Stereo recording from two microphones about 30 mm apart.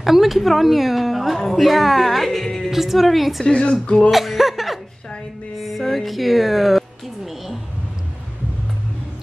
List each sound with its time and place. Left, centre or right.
0.0 s a woman's voice: centre
3.4 s speech: left
4.1 s speech: centre